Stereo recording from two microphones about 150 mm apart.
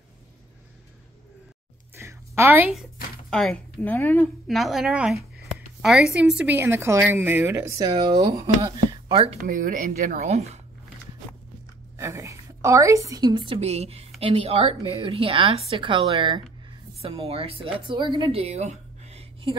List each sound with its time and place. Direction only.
2.0 s a sound: 20° right (ahead or behind)
3.3 s a woman's voice: 5° left (ahead or behind)
4.5 s a woman's voice: centre (ahead or behind); by 8.7 s 25° right (ahead or behind)
9.1 s speech: 45° right (ahead or behind)
9.4 s speech: 60° right (ahead or behind)
12.0 s a woman's voice: 20° right (ahead or behind); by 19.5 s 45° right (ahead or behind)